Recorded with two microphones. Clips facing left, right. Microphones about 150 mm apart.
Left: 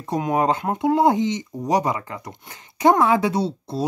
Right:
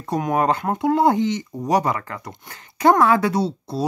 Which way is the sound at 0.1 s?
20° left (ahead or behind).